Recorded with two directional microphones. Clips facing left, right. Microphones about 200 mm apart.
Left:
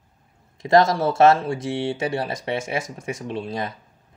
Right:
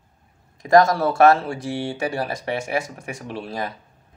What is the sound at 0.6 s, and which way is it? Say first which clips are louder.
Speech: right 1 dB; 25° left (ahead or behind).